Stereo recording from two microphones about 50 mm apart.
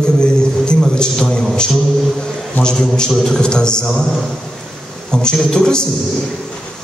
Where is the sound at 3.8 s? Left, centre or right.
Centre.